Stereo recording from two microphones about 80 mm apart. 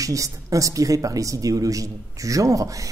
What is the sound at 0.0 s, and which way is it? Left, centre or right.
A man's voice, right.